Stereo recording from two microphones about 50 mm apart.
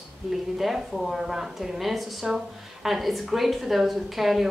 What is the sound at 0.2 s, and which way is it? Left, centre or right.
Speech, centre.